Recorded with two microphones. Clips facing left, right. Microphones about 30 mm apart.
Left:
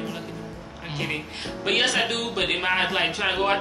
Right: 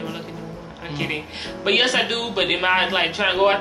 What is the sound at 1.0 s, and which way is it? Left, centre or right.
Speech, centre.